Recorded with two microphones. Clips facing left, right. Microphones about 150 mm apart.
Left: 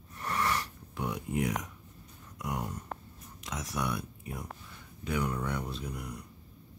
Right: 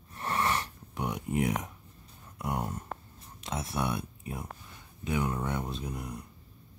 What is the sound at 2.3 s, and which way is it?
Speech, 30° right (ahead or behind).